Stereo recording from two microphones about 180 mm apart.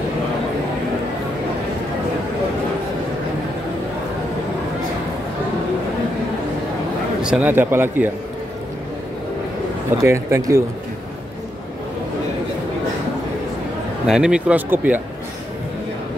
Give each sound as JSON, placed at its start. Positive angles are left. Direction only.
{"t": 7.2, "sound": "speech", "side_deg": -5}
{"t": 9.9, "sound": "speech", "side_deg": -15}
{"t": 14.0, "sound": "speech", "side_deg": -5}